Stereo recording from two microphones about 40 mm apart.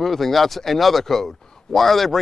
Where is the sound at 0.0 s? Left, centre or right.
Centre.